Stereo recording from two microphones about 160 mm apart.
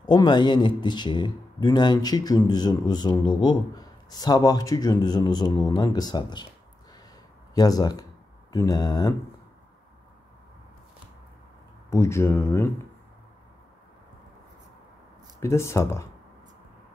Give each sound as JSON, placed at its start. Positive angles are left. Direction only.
{"t": 0.0, "sound": "a man's voice", "side_deg": 30}
{"t": 7.5, "sound": "a man's voice", "side_deg": 25}
{"t": 11.9, "sound": "speech", "side_deg": 20}
{"t": 15.4, "sound": "speech", "side_deg": 15}